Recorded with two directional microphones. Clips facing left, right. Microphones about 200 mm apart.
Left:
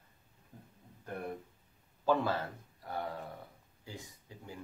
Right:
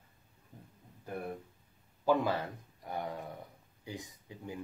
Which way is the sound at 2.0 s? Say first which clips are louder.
Right 1 dB; 15° right (ahead or behind).